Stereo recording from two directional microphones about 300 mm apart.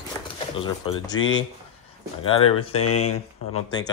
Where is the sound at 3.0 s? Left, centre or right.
Left.